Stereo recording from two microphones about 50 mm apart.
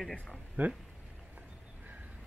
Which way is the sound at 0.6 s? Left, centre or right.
Right.